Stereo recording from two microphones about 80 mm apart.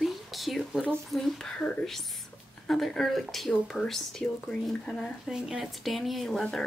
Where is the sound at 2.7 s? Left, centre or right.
Centre.